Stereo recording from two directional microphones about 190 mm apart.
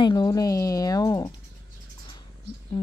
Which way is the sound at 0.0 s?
20° left (ahead or behind).